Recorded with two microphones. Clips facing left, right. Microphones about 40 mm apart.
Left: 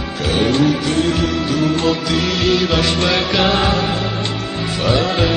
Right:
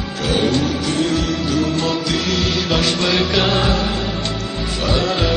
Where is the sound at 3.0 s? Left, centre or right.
Left.